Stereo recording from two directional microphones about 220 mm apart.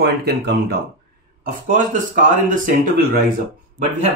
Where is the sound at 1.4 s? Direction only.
35° right (ahead or behind).